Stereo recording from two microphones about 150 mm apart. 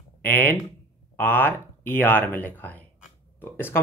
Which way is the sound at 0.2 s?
15° left (ahead or behind).